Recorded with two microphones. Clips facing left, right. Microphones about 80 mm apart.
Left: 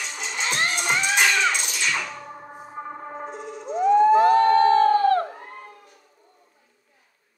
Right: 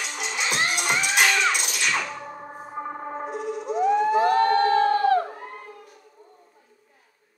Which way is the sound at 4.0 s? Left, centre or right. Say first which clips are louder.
Left 6 dB; left.